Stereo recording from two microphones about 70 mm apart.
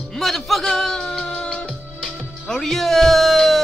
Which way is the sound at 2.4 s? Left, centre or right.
Centre.